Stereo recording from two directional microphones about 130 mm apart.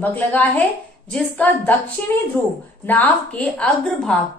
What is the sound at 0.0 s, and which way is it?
A woman's voice, 15° left (ahead or behind).